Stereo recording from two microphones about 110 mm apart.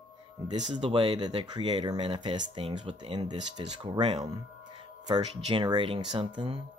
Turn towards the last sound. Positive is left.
turn(degrees=-50)  # may be behind; listen again after turning